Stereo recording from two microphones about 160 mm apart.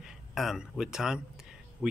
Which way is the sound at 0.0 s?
5° right (ahead or behind).